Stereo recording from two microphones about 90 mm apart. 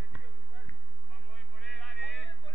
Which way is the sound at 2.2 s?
60° left (ahead or behind).